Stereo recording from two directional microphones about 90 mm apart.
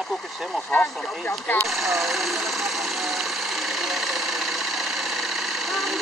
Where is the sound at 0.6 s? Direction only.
15° left (ahead or behind).